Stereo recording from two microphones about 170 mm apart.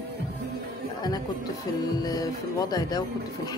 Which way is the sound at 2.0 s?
25° left (ahead or behind).